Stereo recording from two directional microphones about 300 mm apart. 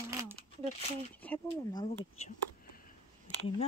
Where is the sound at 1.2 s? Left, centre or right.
Centre.